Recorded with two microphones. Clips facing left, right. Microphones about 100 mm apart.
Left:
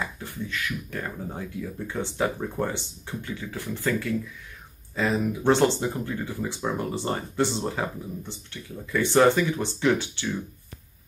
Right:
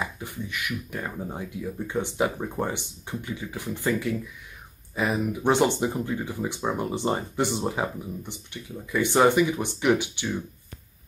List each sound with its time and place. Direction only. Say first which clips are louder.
0.0 s speech: even; 15° right (ahead or behind)